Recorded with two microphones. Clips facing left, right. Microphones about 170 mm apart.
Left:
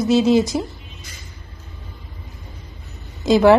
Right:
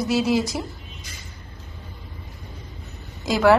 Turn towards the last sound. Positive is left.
turn(degrees=20)  # may be behind; listen again after turning